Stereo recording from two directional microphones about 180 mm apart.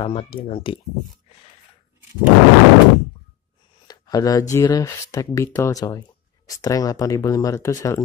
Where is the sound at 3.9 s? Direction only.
20° left (ahead or behind).